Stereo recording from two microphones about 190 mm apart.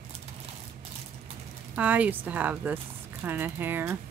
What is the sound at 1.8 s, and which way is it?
Speech, 10° right (ahead or behind).